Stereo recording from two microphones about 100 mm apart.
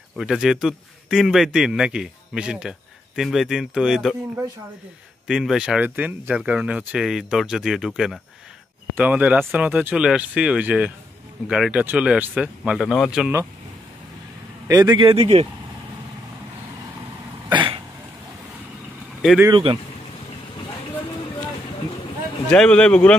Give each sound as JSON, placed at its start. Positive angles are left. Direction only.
{"t": 0.2, "sound": "a man's voice", "side_deg": -5}
{"t": 5.2, "sound": "a man's voice", "side_deg": -5}
{"t": 5.8, "sound": "speech", "side_deg": -15}
{"t": 8.9, "sound": "a man's voice", "side_deg": -15}
{"t": 12.8, "sound": "a man's voice", "side_deg": 5}
{"t": 14.7, "sound": "speech", "side_deg": -35}
{"t": 15.0, "sound": "speech", "side_deg": -80}
{"t": 17.5, "sound": "cough", "side_deg": -55}
{"t": 19.5, "sound": "speech", "side_deg": -55}
{"t": 22.5, "sound": "a man's voice", "side_deg": 10}